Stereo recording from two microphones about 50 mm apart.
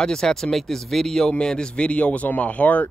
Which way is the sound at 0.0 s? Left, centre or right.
Centre.